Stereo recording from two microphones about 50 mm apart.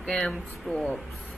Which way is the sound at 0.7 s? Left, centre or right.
Centre.